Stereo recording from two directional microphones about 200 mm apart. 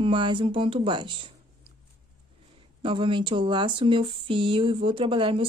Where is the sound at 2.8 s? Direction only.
25° right (ahead or behind).